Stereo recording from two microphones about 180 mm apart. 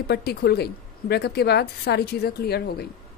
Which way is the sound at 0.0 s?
60° left (ahead or behind).